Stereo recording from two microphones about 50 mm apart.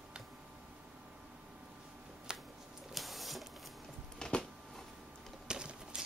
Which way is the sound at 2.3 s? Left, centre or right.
Centre.